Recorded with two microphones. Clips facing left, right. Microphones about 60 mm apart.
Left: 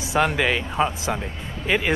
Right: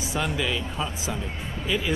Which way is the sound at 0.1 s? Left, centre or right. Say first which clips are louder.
Left 7 dB; left.